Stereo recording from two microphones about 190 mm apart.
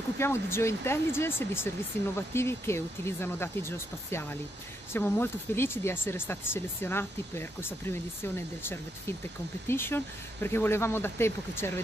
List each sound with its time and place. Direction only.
0.2 s speech: 15° left (ahead or behind)